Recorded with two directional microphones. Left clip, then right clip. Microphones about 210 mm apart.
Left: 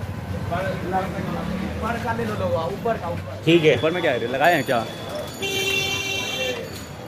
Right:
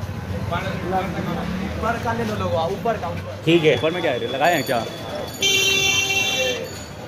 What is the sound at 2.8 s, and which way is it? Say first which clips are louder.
Speech: left 1 dB; 50° right (ahead or behind).